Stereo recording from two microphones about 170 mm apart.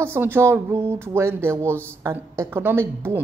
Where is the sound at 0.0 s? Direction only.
15° right (ahead or behind).